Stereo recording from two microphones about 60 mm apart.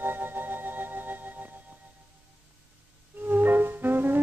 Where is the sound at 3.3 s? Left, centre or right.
Right.